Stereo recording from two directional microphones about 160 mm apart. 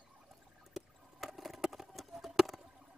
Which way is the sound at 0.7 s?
Centre (ahead or behind).